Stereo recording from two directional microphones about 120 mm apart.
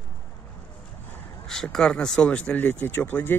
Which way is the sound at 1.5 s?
5° left (ahead or behind).